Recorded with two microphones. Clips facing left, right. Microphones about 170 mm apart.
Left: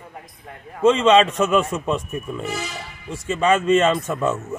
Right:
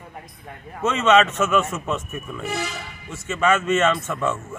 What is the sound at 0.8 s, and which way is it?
Speech, 30° left (ahead or behind).